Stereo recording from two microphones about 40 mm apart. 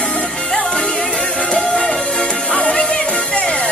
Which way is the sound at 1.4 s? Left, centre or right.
Left.